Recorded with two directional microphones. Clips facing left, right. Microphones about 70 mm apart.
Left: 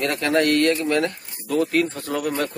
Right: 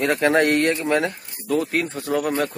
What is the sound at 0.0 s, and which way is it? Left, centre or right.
A man's voice, centre.